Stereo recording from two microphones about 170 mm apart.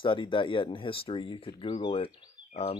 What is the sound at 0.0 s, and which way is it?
Speech, 30° left (ahead or behind).